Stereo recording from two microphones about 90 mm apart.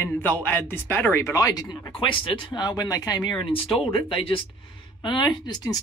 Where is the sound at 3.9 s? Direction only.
70° left (ahead or behind); by 5.7 s 50° left (ahead or behind).